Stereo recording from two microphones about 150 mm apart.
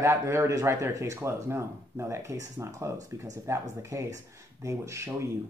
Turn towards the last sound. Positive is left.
turn(degrees=-20)  # may be behind; listen again after turning